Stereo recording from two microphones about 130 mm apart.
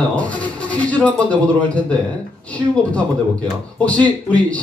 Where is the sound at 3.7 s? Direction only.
10° left (ahead or behind).